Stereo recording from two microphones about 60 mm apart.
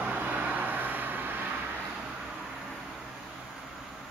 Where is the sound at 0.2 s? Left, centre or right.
Right.